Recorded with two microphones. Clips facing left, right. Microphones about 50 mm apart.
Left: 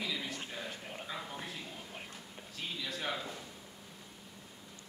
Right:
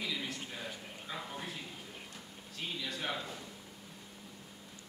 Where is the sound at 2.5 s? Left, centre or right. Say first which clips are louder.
Even; centre.